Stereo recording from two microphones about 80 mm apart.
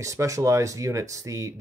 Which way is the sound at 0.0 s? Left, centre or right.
Right.